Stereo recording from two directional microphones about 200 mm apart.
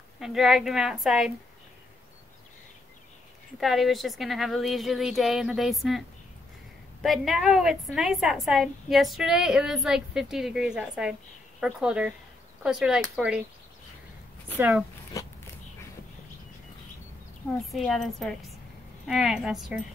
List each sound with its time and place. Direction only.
0.2 s a woman's voice: centre (ahead or behind)
3.5 s a woman's voice: centre (ahead or behind)
14.6 s speech: 10° right (ahead or behind)
15.2 s a sound: 15° left (ahead or behind)
17.6 s a woman's voice: centre (ahead or behind)